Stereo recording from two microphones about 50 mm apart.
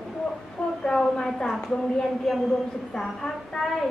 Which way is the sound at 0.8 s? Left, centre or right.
Centre.